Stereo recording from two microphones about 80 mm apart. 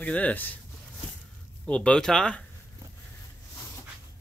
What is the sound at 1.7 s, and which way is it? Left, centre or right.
Speech, centre.